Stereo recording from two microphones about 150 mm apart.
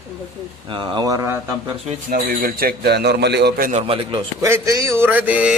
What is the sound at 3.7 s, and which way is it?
Speech, 40° right (ahead or behind).